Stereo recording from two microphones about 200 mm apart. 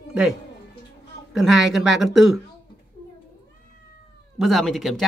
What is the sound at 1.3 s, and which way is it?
Speech, centre (ahead or behind).